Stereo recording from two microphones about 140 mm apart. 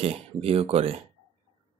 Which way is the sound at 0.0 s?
45° right (ahead or behind).